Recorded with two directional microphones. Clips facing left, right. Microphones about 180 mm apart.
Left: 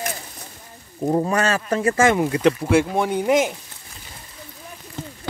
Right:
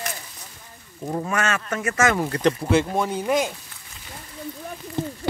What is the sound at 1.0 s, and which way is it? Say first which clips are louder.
Speech: left 6 dB; 35° left (ahead or behind).